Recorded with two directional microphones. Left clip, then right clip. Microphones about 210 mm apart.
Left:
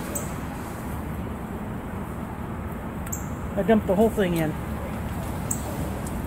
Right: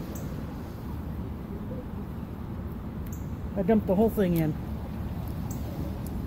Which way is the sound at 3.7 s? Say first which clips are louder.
Left 4 dB; 40° right (ahead or behind).